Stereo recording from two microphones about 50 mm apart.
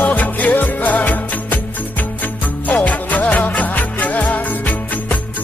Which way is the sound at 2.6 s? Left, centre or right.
Left.